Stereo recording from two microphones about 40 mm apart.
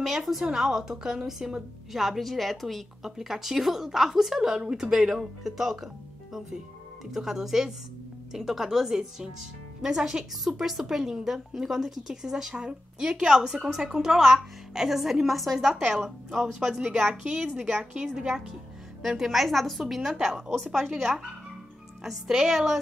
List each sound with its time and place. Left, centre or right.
0.0 s a woman's voice: centre
7.1 s a woman's voice: centre
16.5 s a woman's voice: centre
19.0 s a woman's voice: centre
20.4 s a woman's voice: centre
22.0 s a woman's voice: centre